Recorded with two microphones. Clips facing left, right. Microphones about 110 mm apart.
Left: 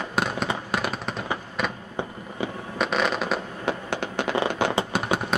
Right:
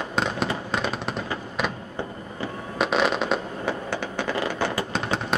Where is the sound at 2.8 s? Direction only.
Centre (ahead or behind).